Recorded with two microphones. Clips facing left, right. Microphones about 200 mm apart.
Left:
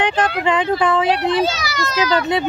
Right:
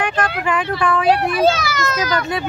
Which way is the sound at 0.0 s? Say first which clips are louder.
Left 3 dB; 20° left (ahead or behind).